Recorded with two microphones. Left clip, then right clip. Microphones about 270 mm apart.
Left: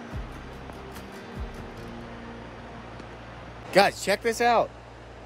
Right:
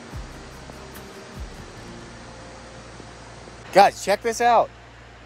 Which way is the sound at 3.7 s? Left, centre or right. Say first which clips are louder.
Right 5 dB; centre.